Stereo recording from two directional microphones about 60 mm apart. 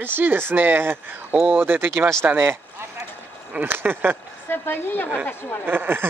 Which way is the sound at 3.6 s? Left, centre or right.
Right.